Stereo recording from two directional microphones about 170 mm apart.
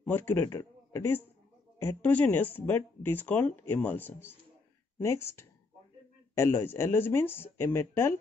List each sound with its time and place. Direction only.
0.0 s a man's voice: 10° left (ahead or behind)